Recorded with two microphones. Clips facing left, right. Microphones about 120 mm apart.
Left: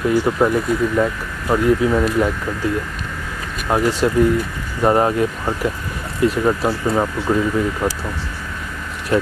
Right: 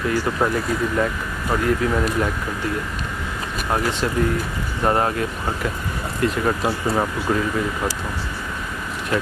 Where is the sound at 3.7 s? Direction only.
20° left (ahead or behind).